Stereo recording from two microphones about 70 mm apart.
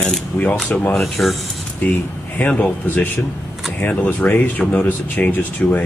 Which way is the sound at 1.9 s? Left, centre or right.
Left.